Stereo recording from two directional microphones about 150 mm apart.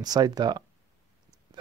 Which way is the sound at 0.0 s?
25° right (ahead or behind).